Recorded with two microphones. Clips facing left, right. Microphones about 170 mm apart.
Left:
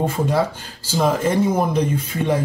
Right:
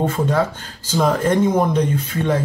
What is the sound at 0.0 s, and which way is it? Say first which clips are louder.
Speech: right 1 dB; 10° left (ahead or behind).